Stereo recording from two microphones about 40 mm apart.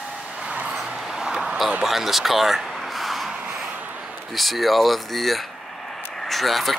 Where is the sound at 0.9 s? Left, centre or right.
Centre.